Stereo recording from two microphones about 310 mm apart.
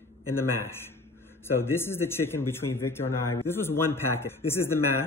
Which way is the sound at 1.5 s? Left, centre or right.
Centre.